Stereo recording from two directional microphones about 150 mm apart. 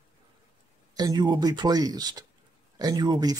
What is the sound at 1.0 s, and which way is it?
Speech, 25° right (ahead or behind).